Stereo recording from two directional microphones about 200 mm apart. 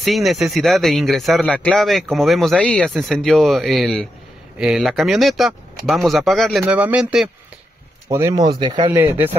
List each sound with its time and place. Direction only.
0.0 s a man's voice: centre (ahead or behind)
8.1 s speech: 15° right (ahead or behind)